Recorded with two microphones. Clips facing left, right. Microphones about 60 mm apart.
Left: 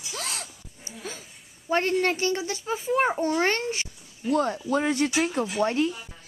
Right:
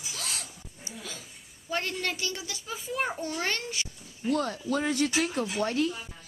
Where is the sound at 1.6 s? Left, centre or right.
Left.